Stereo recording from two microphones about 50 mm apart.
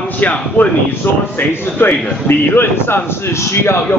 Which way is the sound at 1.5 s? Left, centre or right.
Left.